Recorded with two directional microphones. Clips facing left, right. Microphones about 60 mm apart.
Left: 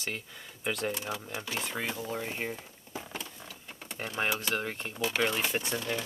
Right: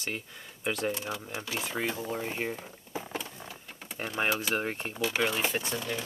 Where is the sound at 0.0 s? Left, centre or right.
Centre.